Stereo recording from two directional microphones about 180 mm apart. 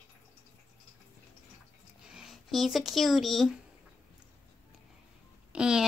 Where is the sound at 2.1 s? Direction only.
Centre (ahead or behind).